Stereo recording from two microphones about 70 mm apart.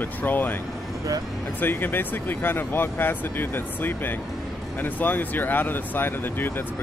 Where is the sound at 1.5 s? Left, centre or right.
Left.